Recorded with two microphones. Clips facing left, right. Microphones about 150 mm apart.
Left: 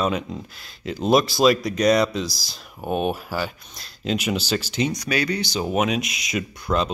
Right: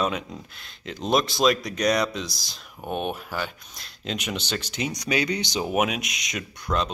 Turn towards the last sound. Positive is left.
turn(degrees=5)  # may be behind; listen again after turning